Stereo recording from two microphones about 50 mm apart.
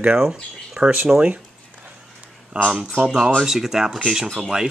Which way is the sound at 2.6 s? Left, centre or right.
Centre.